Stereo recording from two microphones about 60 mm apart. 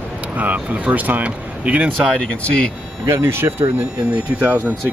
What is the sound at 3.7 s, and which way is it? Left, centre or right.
Speech, right.